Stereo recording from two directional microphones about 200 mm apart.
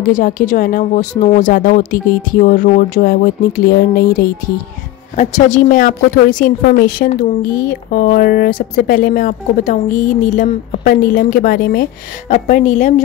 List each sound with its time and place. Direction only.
0.0 s speech: 40° left (ahead or behind)
5.1 s a woman's voice: 35° left (ahead or behind)